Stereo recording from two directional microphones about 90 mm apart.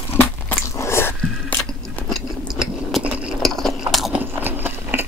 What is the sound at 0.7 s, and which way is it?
Biting, 30° left (ahead or behind).